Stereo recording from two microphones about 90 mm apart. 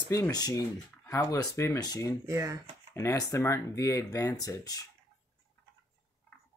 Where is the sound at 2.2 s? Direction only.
35° right (ahead or behind).